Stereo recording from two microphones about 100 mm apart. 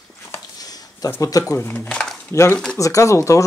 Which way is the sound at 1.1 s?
35° left (ahead or behind).